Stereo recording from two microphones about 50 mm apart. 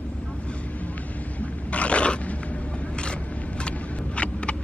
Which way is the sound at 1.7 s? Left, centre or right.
Left.